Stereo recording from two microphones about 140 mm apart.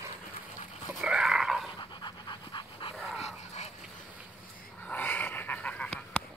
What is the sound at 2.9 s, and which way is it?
Dog, centre (ahead or behind).